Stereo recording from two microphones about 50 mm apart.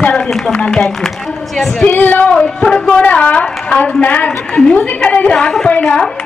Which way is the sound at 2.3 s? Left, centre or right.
Centre.